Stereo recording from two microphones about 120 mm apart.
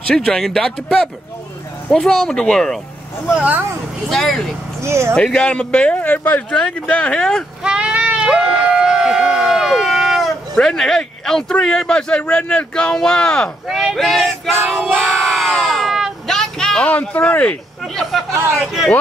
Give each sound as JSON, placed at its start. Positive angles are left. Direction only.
{"t": 0.1, "sound": "speech", "side_deg": 5}
{"t": 3.3, "sound": "speech", "side_deg": -10}
{"t": 4.1, "sound": "speech", "side_deg": 0}
{"t": 4.8, "sound": "speech", "side_deg": -20}
{"t": 5.1, "sound": "speech", "side_deg": 10}
{"t": 7.6, "sound": "a sound", "side_deg": -5}
{"t": 13.7, "sound": "speech", "side_deg": -5}
{"t": 14.9, "sound": "crowd", "side_deg": 0}
{"t": 18.6, "sound": "speech", "side_deg": -5}